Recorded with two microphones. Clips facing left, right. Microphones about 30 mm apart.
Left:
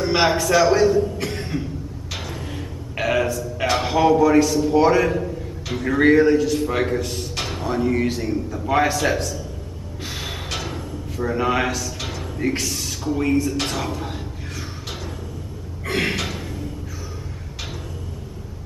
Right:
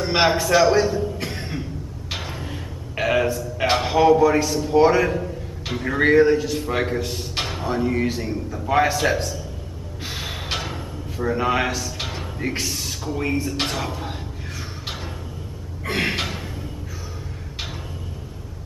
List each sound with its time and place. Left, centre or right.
0.0 s a man's voice: centre
2.4 s a sound: centre
3.7 s a man's voice: centre
10.0 s music: centre
10.7 s drawer open or close: centre
12.0 s music: right
12.4 s a man's voice: centre
15.8 s gasp: centre
16.3 s a sound: centre